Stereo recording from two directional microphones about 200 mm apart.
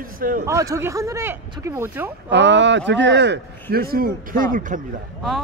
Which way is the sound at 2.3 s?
60° right (ahead or behind).